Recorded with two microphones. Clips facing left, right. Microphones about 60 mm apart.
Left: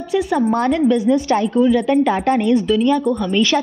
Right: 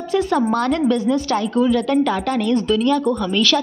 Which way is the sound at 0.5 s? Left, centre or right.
Centre.